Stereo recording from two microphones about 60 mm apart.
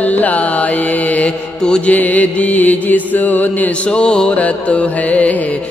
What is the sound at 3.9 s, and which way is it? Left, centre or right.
Music, centre.